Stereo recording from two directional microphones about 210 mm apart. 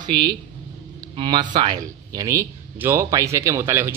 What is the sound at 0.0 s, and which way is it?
Speech, 20° right (ahead or behind).